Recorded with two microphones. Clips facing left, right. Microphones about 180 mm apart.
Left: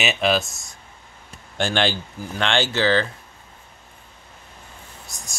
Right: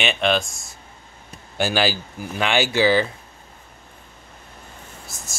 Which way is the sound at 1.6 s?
5° right (ahead or behind).